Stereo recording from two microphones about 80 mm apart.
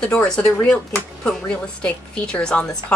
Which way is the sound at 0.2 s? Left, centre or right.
Centre.